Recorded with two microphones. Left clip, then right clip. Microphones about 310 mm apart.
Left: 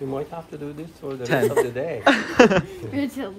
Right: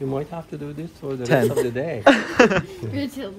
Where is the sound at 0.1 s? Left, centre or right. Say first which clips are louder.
Right 1 dB; right.